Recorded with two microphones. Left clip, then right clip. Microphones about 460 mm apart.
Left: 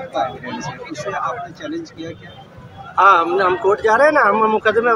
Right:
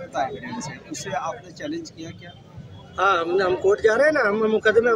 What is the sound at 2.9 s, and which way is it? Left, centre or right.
Speech, right.